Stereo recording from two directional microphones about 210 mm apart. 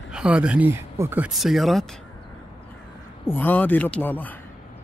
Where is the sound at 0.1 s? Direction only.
5° right (ahead or behind).